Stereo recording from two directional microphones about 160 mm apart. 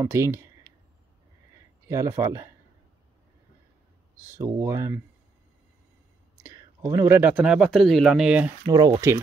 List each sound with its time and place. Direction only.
0.0 s a sound: 15° right (ahead or behind)
1.9 s speech: 20° right (ahead or behind)
4.4 s speech: 20° right (ahead or behind)
6.4 s speech: 20° right (ahead or behind)
8.6 s speech: 25° right (ahead or behind)